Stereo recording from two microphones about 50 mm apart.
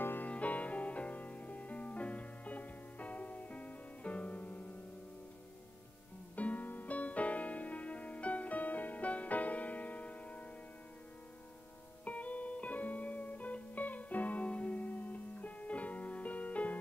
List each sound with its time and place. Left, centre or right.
0.0 s music: left
0.3 s music: left
6.3 s music: left
12.0 s music: left